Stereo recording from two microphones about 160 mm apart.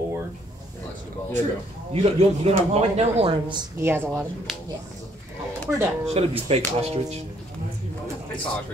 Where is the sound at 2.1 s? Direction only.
40° right (ahead or behind).